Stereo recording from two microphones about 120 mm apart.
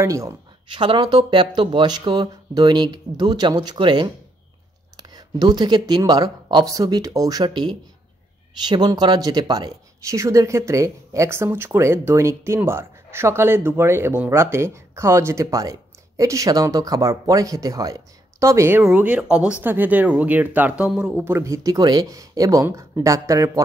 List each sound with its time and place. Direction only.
0.0 s speech: 25° right (ahead or behind)
0.7 s speech: 40° right (ahead or behind); by 21.3 s 10° right (ahead or behind)
21.3 s speech: 25° right (ahead or behind)